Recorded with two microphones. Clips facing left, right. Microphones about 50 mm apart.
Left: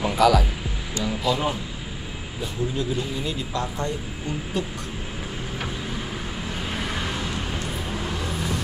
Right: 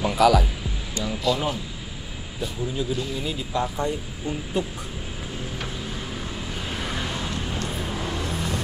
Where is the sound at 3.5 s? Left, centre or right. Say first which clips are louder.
Right 6 dB; centre.